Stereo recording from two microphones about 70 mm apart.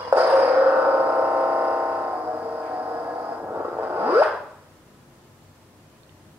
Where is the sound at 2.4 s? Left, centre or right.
Centre.